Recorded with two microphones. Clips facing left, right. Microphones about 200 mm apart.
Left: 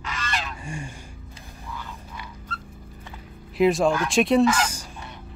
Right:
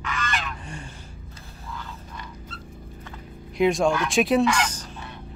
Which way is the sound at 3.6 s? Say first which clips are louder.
Left 1 dB; centre (ahead or behind).